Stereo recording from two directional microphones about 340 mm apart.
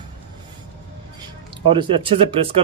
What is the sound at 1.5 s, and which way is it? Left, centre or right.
Speech, centre.